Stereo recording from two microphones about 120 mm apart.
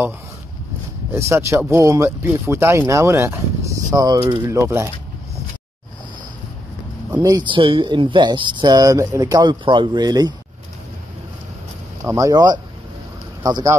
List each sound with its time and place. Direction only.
1.1 s speech: 25° right (ahead or behind)
7.2 s speech: 35° right (ahead or behind)
12.0 s speech: 25° right (ahead or behind)